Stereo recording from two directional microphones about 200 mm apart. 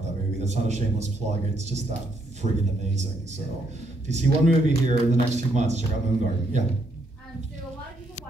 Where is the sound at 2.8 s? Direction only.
35° right (ahead or behind).